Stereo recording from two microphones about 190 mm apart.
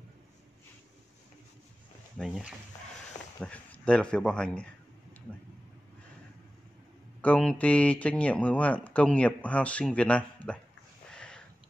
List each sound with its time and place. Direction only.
2.1 s speech: centre (ahead or behind)
7.2 s speech: 5° left (ahead or behind)
11.1 s sniff: 5° left (ahead or behind)